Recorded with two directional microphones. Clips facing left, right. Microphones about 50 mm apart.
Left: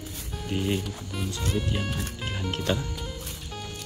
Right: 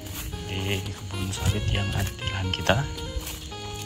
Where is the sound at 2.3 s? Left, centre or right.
Right.